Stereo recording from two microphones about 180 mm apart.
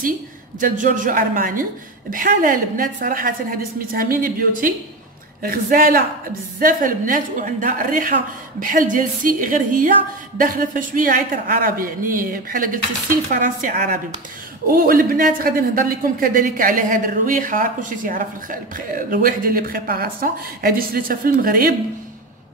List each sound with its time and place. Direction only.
0.6 s a man's voice: 45° right (ahead or behind)